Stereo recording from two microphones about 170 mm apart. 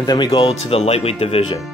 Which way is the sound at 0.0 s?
25° left (ahead or behind).